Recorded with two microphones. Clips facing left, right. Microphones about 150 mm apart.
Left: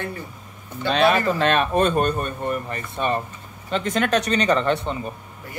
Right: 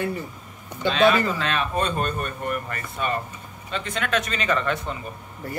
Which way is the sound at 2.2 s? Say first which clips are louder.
Left 3 dB; 30° left (ahead or behind).